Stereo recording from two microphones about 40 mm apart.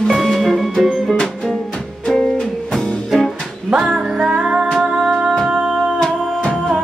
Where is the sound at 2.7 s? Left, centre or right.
Centre.